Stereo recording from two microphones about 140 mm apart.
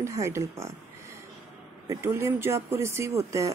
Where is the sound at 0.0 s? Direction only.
20° right (ahead or behind).